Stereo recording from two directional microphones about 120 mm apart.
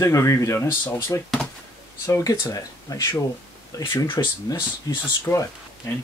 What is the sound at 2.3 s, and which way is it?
Speech, 30° left (ahead or behind).